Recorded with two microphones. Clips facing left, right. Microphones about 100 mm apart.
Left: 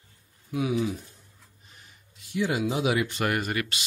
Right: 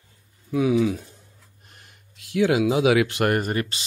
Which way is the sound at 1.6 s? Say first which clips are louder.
Right 2 dB; 60° right (ahead or behind).